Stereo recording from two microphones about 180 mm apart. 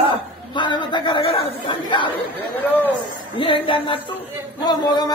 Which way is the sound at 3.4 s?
30° left (ahead or behind).